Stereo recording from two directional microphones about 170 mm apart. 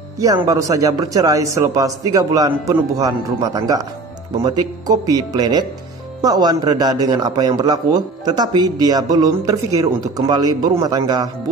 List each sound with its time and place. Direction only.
0.4 s a man's voice: 20° right (ahead or behind)